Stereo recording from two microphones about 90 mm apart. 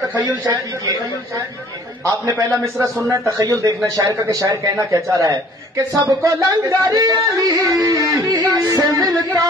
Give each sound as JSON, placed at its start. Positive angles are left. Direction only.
{"t": 0.1, "sound": "a man's voice", "side_deg": -40}
{"t": 2.2, "sound": "a man's voice", "side_deg": -35}
{"t": 8.8, "sound": "a sound", "side_deg": -45}